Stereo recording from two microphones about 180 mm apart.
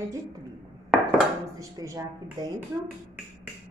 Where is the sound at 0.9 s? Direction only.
Centre (ahead or behind).